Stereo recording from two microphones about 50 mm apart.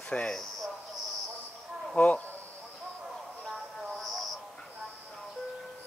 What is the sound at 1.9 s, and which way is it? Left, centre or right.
Speech, left.